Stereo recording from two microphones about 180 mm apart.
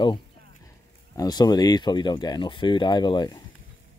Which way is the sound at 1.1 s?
20° left (ahead or behind).